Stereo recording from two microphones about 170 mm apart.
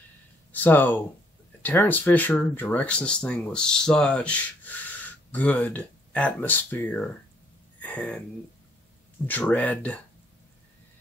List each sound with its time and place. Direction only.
0.5 s speech: 10° left (ahead or behind)
7.8 s a sound: 5° left (ahead or behind)
9.2 s speech: 10° left (ahead or behind)